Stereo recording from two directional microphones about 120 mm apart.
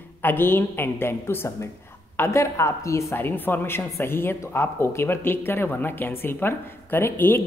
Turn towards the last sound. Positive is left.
turn(degrees=15)  # may be behind; listen again after turning